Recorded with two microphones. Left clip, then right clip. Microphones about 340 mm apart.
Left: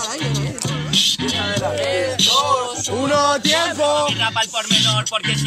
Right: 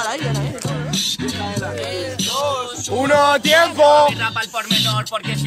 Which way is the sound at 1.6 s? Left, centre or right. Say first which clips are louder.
Left 5 dB; left.